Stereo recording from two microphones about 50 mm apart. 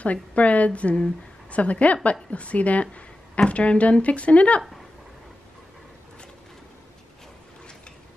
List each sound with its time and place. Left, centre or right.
0.0 s a woman's voice: left